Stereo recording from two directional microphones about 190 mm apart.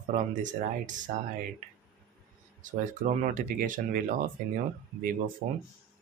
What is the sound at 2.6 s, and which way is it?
Speech, 45° right (ahead or behind).